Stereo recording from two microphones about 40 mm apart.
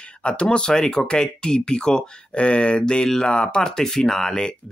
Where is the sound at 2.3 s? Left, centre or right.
Left.